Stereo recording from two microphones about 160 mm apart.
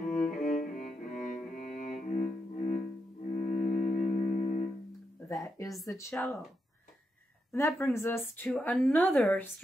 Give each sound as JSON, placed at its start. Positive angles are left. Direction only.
{"t": 0.3, "sound": "cello", "side_deg": 50}
{"t": 3.3, "sound": "music", "side_deg": 50}
{"t": 5.3, "sound": "a sound", "side_deg": 20}
{"t": 5.9, "sound": "speech", "side_deg": 20}
{"t": 6.1, "sound": "speech", "side_deg": 5}
{"t": 7.5, "sound": "a woman's voice", "side_deg": 15}
{"t": 8.5, "sound": "a woman's voice", "side_deg": 5}